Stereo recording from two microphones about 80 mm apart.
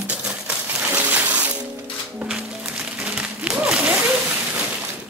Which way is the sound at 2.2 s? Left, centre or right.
Centre.